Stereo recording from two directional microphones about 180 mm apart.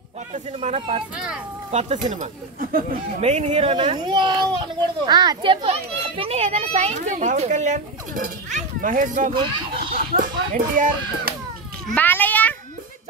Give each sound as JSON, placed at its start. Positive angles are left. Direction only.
{"t": 0.3, "sound": "a child's voice", "side_deg": -40}
{"t": 1.1, "sound": "speech", "side_deg": -5}
{"t": 1.7, "sound": "speech", "side_deg": -40}
{"t": 3.2, "sound": "a child's voice", "side_deg": -35}
{"t": 9.3, "sound": "speech", "side_deg": -25}
{"t": 10.1, "sound": "speech", "side_deg": -45}
{"t": 11.9, "sound": "a child's voice", "side_deg": 10}